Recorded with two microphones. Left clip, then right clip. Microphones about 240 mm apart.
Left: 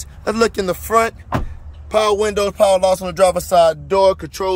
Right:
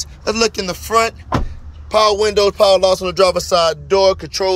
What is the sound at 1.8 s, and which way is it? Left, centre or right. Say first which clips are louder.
Music: right 2 dB; centre.